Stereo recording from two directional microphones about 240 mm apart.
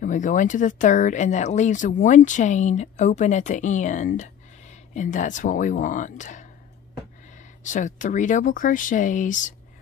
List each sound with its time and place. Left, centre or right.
0.0 s speech: left